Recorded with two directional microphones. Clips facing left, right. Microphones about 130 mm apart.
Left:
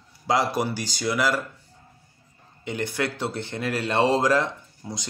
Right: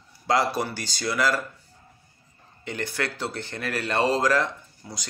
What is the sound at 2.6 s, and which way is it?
Speech, 20° left (ahead or behind).